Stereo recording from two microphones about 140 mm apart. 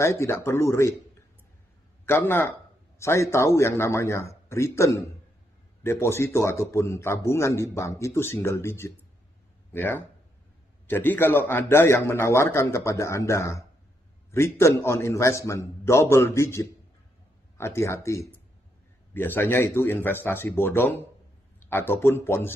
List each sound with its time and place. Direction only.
0.0 s a man's voice: 20° left (ahead or behind)
2.0 s a man's voice: 15° left (ahead or behind)